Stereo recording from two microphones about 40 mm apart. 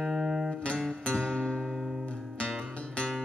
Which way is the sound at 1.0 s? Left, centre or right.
Centre.